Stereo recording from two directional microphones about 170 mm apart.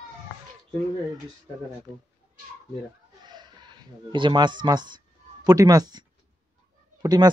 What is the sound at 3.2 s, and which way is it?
Speech, 25° right (ahead or behind).